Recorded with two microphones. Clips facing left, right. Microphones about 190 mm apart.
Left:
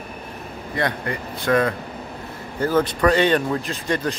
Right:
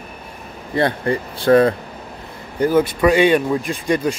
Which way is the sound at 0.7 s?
30° right (ahead or behind).